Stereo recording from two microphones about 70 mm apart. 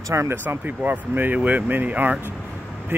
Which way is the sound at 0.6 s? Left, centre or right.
Right.